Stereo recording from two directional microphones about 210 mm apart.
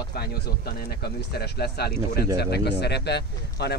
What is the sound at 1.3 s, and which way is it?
Speech, 50° left (ahead or behind).